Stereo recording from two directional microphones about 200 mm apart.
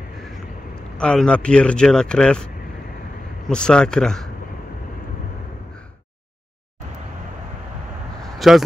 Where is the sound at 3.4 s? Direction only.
5° left (ahead or behind).